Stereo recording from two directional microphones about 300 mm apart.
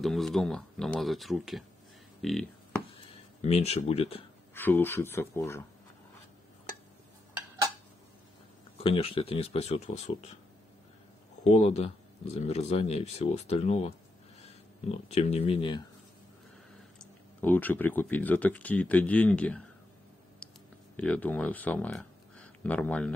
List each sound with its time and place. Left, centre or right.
0.0 s speech: centre
3.4 s speech: left
4.6 s speech: centre
8.7 s speech: centre
11.5 s speech: left
17.0 s speech: centre
20.9 s speech: centre